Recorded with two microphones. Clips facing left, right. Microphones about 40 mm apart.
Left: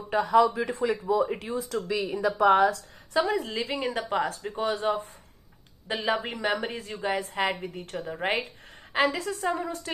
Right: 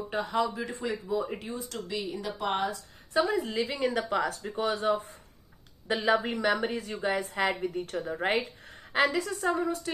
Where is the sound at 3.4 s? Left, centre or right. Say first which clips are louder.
Even; left.